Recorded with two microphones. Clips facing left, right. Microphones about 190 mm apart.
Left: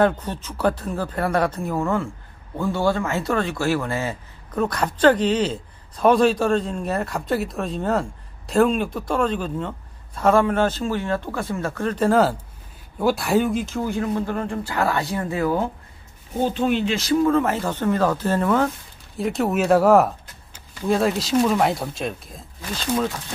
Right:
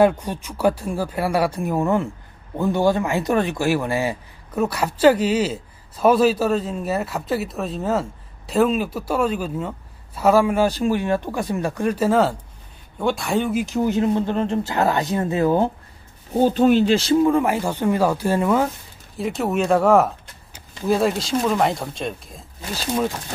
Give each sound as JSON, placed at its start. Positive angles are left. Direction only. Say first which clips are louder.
{"t": 0.0, "sound": "speech", "louder": "right 3 dB", "side_deg": -10}
{"t": 13.6, "sound": "speech", "louder": "right 4 dB", "side_deg": -15}
{"t": 16.3, "sound": "speech", "louder": "right 6 dB", "side_deg": -40}